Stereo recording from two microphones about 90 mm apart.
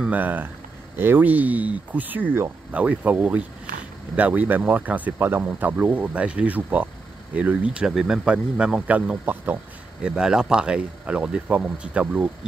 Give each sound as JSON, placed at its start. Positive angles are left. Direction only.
{"t": 0.0, "sound": "speech", "side_deg": -20}
{"t": 10.0, "sound": "speech", "side_deg": -10}